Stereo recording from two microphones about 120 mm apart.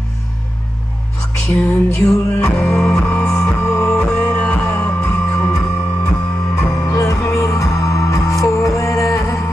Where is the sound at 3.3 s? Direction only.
25° left (ahead or behind).